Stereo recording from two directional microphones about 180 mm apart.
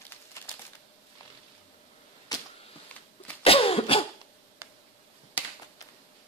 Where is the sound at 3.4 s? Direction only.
30° left (ahead or behind).